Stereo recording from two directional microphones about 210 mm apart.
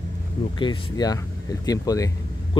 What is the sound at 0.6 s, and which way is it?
Speech, 20° left (ahead or behind).